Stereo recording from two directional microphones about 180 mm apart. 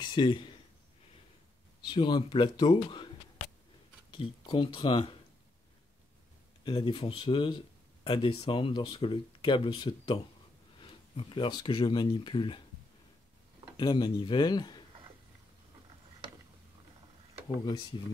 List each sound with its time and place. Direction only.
0.0 s a man's voice: 25° left (ahead or behind)
1.9 s speech: 25° left (ahead or behind)
4.1 s speech: 30° left (ahead or behind)
6.6 s speech: 30° left (ahead or behind)
13.7 s speech: 25° left (ahead or behind)